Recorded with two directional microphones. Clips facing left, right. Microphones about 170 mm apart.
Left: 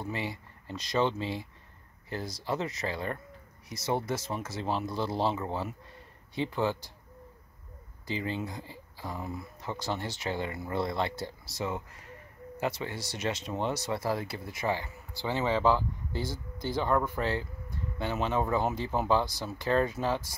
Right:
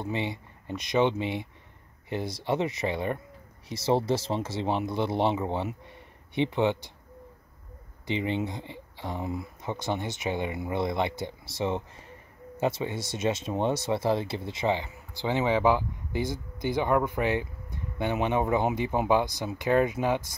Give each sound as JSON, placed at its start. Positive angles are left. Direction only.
{"t": 0.0, "sound": "speech", "side_deg": -20}
{"t": 8.1, "sound": "speech", "side_deg": -20}